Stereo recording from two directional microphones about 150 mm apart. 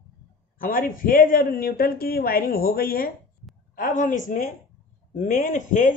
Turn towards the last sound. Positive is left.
turn(degrees=55)  # may be behind; listen again after turning